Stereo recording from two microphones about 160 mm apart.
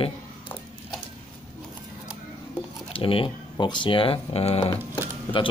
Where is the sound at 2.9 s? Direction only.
35° left (ahead or behind).